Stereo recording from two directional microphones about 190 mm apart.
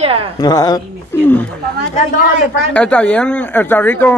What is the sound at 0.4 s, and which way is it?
Speech, 20° left (ahead or behind).